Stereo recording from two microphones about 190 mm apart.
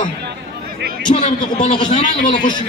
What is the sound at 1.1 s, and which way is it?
Speech, 30° left (ahead or behind).